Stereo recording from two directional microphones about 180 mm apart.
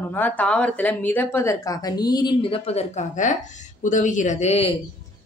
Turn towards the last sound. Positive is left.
turn(degrees=35)  # may be behind; listen again after turning